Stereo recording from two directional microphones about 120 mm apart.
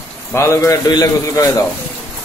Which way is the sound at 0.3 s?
25° left (ahead or behind).